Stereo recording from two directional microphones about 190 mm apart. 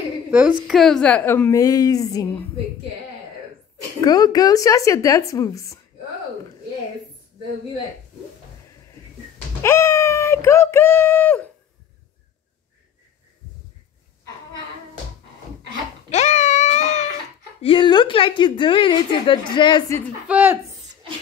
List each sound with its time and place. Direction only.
0.3 s a woman's voice: 5° right (ahead or behind); by 2.4 s 20° left (ahead or behind)
4.0 s a woman's voice: 20° left (ahead or behind)
9.6 s a woman's voice: 15° left (ahead or behind)
16.1 s a sound: 40° left (ahead or behind)
17.6 s a woman's voice: 25° left (ahead or behind)
20.2 s speech: 5° right (ahead or behind)